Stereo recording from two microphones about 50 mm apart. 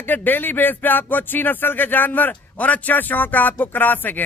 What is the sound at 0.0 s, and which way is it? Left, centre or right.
Speech, left.